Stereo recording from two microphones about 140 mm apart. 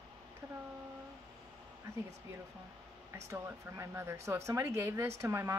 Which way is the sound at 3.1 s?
20° right (ahead or behind).